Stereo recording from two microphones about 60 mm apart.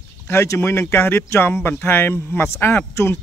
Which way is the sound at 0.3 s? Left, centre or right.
Left.